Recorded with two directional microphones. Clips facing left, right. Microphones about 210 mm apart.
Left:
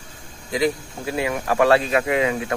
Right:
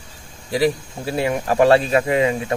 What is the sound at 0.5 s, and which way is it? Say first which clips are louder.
Speech: right 3 dB; 30° right (ahead or behind).